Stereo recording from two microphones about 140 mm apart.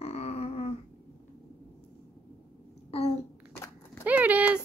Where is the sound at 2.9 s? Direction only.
45° left (ahead or behind).